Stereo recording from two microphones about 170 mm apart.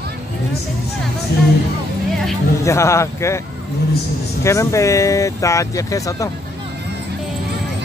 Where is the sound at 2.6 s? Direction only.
15° left (ahead or behind).